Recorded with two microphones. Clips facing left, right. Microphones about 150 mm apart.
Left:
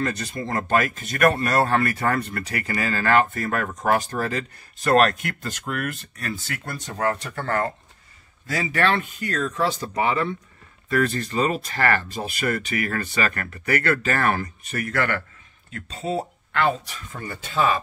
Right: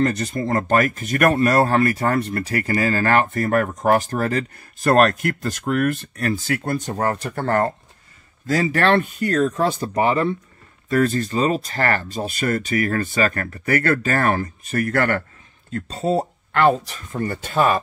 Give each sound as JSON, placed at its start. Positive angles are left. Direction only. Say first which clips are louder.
{"t": 0.0, "sound": "speech", "louder": "right 6 dB", "side_deg": -45}
{"t": 1.7, "sound": "speech", "louder": "right 4 dB", "side_deg": -30}